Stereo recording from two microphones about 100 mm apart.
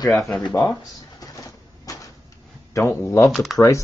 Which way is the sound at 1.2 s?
35° left (ahead or behind).